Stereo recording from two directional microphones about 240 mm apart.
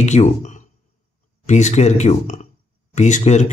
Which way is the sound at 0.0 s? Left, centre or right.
Left.